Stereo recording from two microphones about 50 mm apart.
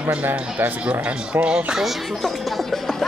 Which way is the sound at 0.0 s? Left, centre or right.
Right.